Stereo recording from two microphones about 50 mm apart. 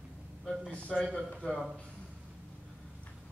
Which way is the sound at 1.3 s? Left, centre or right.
Left.